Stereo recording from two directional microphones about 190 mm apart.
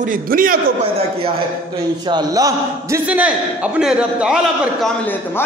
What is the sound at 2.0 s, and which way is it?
Speech, 20° right (ahead or behind).